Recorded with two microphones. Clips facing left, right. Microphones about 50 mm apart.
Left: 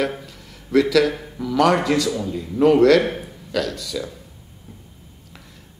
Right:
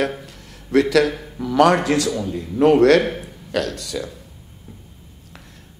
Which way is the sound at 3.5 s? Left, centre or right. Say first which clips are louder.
Right 1 dB; right.